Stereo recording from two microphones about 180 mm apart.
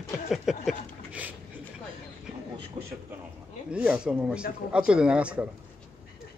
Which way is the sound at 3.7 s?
5° right (ahead or behind).